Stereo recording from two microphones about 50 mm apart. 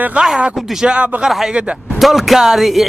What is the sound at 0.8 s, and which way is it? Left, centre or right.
Speech, centre.